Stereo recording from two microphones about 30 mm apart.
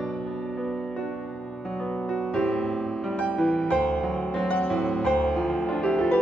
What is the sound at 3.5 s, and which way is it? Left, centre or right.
Music, left.